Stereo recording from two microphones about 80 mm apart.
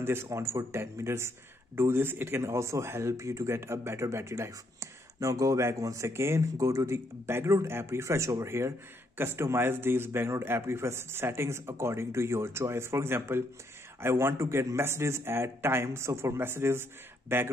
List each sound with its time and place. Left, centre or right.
0.0 s speech: right